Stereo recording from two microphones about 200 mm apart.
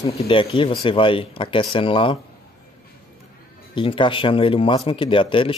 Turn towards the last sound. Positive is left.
turn(degrees=25)  # may be behind; listen again after turning